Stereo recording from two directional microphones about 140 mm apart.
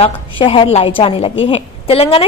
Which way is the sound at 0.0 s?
40° left (ahead or behind).